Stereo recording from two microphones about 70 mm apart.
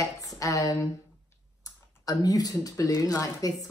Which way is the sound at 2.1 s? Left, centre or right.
Left.